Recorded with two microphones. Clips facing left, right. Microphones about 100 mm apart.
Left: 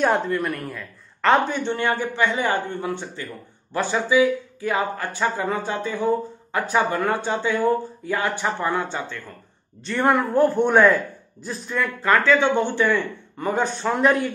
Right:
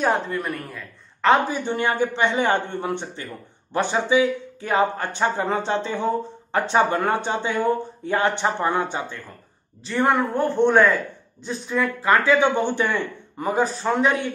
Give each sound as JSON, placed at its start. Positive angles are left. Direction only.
{"t": 0.0, "sound": "a man's voice", "side_deg": 0}
{"t": 1.7, "sound": "speech", "side_deg": -15}
{"t": 9.8, "sound": "a man's voice", "side_deg": 0}